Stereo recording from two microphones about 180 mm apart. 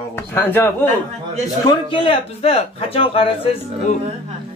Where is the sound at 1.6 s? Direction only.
30° left (ahead or behind).